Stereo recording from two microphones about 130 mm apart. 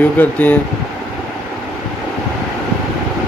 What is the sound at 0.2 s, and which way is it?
Speech, 10° left (ahead or behind).